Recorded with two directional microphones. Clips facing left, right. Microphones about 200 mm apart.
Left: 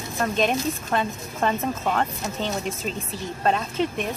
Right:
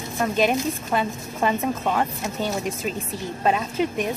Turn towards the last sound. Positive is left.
turn(degrees=-10)  # may be behind; listen again after turning